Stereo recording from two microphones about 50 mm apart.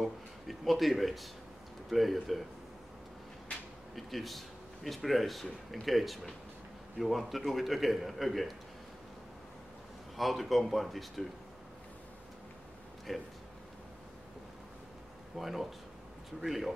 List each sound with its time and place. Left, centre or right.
0.0 s speech: centre
3.5 s a sound: left
3.9 s speech: centre
10.1 s speech: centre
13.1 s speech: centre
15.3 s speech: centre